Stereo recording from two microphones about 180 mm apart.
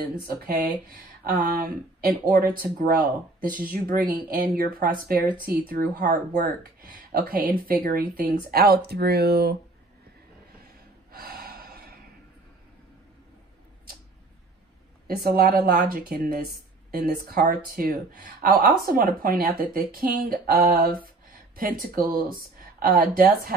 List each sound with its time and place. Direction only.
0.0 s speech: 55° right (ahead or behind)
11.1 s gasp: 55° right (ahead or behind)
15.0 s speech: 60° right (ahead or behind)